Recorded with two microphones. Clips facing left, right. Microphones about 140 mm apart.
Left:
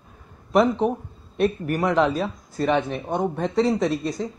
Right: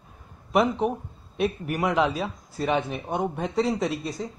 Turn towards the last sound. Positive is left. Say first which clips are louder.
# left 4 dB
turn(degrees=-5)  # may be behind; listen again after turning